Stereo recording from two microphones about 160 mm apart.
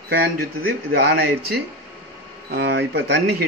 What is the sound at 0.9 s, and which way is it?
A man's voice, 90° right.